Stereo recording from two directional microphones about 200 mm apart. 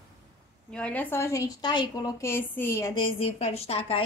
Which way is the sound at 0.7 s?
5° left (ahead or behind).